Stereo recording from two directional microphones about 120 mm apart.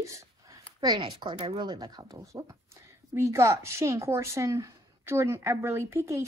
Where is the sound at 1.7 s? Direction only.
35° right (ahead or behind).